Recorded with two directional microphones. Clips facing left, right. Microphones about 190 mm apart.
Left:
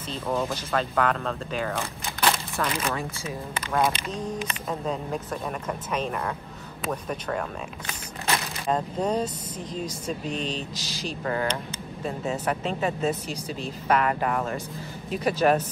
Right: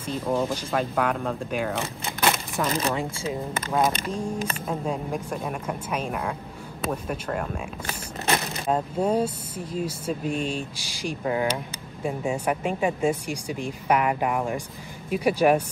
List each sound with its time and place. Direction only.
0.1 s speech: 15° right (ahead or behind)
1.8 s a sound: 15° right (ahead or behind)
2.9 s speech: 25° right (ahead or behind)
4.1 s speech: 10° right (ahead or behind)
7.8 s a sound: 30° right (ahead or behind)
8.6 s speech: 5° right (ahead or behind)